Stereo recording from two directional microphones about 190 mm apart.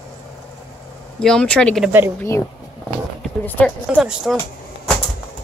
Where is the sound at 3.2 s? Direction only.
10° left (ahead or behind).